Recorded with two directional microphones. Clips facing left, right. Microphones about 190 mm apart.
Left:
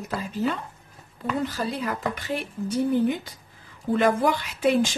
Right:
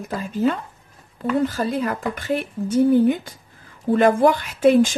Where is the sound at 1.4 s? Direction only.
50° right (ahead or behind).